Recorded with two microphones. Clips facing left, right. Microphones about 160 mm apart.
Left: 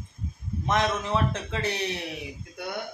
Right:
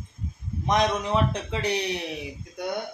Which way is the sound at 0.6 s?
15° right (ahead or behind).